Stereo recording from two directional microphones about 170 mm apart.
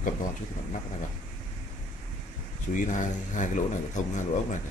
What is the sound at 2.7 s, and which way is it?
Speech, 50° left (ahead or behind).